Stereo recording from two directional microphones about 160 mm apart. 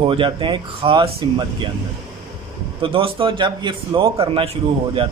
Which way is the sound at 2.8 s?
35° right (ahead or behind).